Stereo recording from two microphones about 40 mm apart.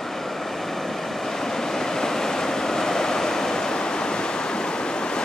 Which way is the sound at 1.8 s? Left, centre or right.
Centre.